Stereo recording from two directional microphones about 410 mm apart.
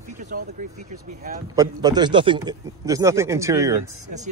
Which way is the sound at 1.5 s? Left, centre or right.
Centre.